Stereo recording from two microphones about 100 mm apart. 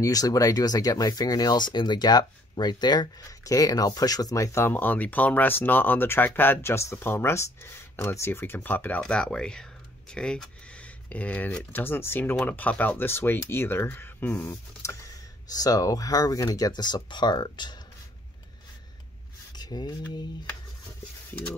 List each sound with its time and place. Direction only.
0.0 s speech: 35° left (ahead or behind); by 9.0 s 20° left (ahead or behind)
9.0 s speech: 10° left (ahead or behind); by 15.0 s 25° left (ahead or behind)
15.5 s speech: 40° left (ahead or behind)
19.5 s a sound: 45° left (ahead or behind)